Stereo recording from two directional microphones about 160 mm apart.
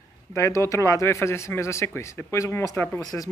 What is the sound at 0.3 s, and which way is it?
A man's voice, 15° left (ahead or behind).